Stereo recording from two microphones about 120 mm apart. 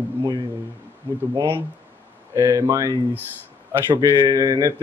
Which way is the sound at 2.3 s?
25° right (ahead or behind).